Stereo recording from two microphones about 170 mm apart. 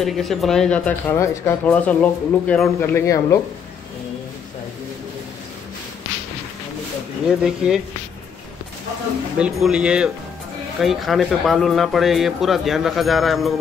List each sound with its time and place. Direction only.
0.0 s speech: centre (ahead or behind); by 3.3 s 15° left (ahead or behind)
7.2 s speech: 5° right (ahead or behind)
9.4 s speech: 5° right (ahead or behind)